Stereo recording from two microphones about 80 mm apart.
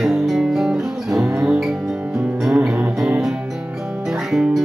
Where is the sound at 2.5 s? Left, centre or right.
Centre.